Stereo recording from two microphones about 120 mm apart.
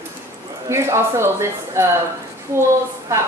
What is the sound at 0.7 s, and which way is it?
A woman's voice, 20° right (ahead or behind).